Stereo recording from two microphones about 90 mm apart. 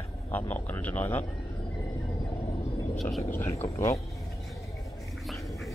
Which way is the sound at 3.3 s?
35° left (ahead or behind).